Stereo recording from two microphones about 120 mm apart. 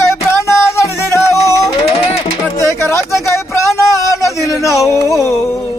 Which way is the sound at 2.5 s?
25° left (ahead or behind).